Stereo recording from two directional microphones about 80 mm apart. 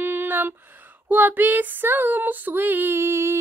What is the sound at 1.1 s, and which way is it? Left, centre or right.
Female singing, right.